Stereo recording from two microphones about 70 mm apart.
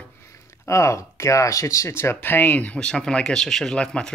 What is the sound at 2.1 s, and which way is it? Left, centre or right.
Speech, left.